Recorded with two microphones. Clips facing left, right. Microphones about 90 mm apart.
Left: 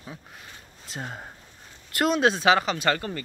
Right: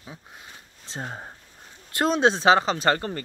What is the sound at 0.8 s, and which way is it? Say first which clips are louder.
Speech: right 2 dB; 25° right (ahead or behind).